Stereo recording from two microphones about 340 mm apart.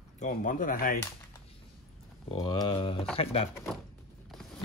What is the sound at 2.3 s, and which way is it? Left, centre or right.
Speech, centre.